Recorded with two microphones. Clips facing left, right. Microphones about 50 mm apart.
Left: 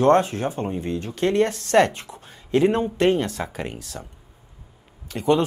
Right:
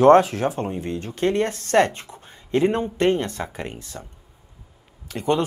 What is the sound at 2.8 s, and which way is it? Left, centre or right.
Speech, centre.